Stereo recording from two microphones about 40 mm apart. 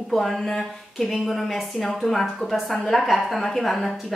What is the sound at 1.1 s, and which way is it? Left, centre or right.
A woman's voice, centre.